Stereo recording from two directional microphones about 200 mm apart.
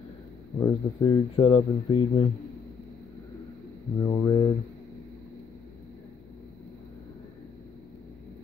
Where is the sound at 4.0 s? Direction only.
20° left (ahead or behind).